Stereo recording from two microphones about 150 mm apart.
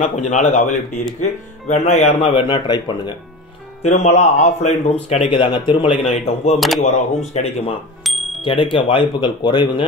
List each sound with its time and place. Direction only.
0.0 s speech: 50° left (ahead or behind); by 3.2 s 30° left (ahead or behind)
3.8 s speech: 45° left (ahead or behind)
5.1 s speech: 35° left (ahead or behind)
8.0 s music: centre (ahead or behind)
8.4 s speech: 35° left (ahead or behind)